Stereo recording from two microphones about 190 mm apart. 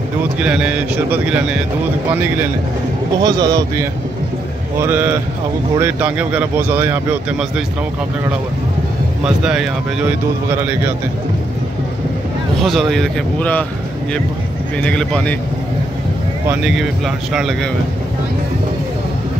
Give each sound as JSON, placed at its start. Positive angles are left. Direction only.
{"t": 0.4, "sound": "speech", "side_deg": -5}
{"t": 3.2, "sound": "a man's voice", "side_deg": -20}
{"t": 4.7, "sound": "speech", "side_deg": -10}
{"t": 9.2, "sound": "speech", "side_deg": -5}
{"t": 12.6, "sound": "speech", "side_deg": 0}
{"t": 14.8, "sound": "speech", "side_deg": 5}
{"t": 16.4, "sound": "speech", "side_deg": 0}